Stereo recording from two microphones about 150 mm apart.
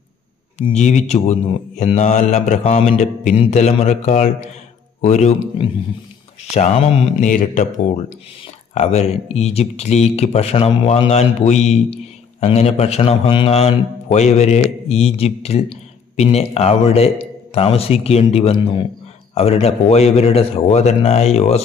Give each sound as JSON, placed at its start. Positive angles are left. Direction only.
{"t": 0.7, "sound": "a man's voice", "side_deg": 50}
{"t": 7.2, "sound": "speech", "side_deg": 60}
{"t": 8.7, "sound": "a man's voice", "side_deg": 45}